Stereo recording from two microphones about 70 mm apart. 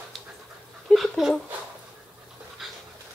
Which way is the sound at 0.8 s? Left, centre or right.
Centre.